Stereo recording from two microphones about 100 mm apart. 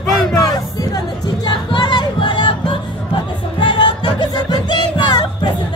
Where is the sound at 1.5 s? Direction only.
50° left (ahead or behind).